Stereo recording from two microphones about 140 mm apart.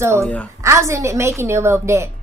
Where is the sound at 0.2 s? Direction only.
10° left (ahead or behind).